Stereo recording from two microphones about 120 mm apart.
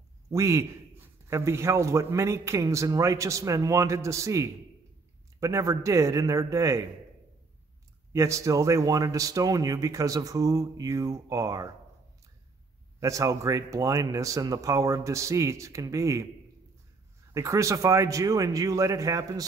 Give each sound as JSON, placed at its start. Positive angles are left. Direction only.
{"t": 0.3, "sound": "speech", "side_deg": -25}
{"t": 8.1, "sound": "speech", "side_deg": -25}
{"t": 13.0, "sound": "speech", "side_deg": -25}
{"t": 17.3, "sound": "speech", "side_deg": -25}